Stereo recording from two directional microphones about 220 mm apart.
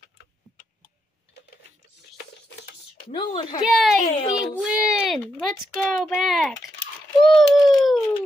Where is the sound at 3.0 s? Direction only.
25° left (ahead or behind).